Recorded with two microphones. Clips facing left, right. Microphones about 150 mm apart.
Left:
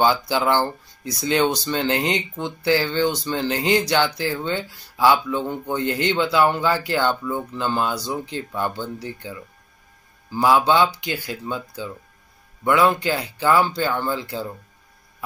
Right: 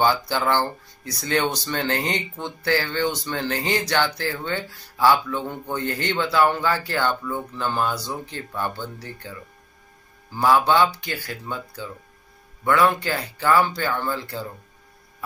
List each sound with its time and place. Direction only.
0.0 s speech: 15° left (ahead or behind)
10.4 s speech: 15° left (ahead or behind)